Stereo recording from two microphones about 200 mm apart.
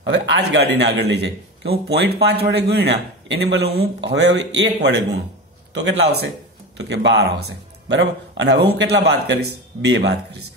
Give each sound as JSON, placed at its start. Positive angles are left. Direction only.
{"t": 0.0, "sound": "a man's voice", "side_deg": -65}